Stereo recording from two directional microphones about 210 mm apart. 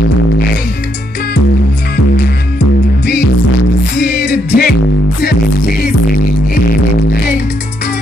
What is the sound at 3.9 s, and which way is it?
Music, 45° left (ahead or behind).